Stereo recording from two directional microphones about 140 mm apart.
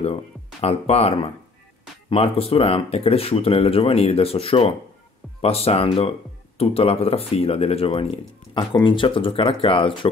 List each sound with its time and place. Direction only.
0.0 s speech: 45° left (ahead or behind)